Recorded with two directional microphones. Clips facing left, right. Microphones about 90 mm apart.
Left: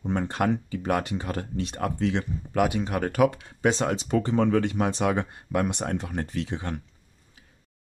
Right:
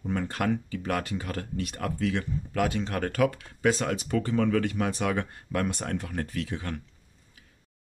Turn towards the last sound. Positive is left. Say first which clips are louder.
# left 2 dB
turn(degrees=25)  # may be behind; listen again after turning